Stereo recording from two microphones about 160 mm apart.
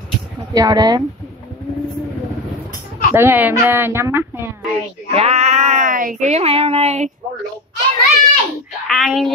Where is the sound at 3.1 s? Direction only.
15° right (ahead or behind).